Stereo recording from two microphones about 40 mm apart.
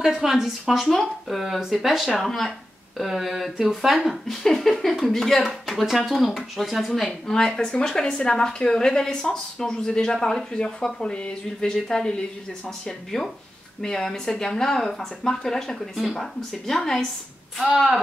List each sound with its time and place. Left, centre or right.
0.0 s speech: centre
0.8 s speech: centre
1.4 s speech: centre
2.1 s speech: centre
3.0 s speech: centre
4.3 s speech: centre
7.1 s speech: centre
17.6 s speech: centre